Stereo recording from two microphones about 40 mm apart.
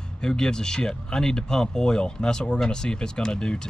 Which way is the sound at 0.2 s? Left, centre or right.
Centre.